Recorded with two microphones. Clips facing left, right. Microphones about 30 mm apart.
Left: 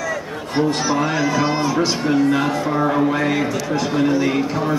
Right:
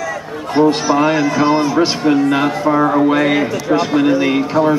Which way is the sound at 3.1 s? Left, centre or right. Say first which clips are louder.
Right 5 dB; right.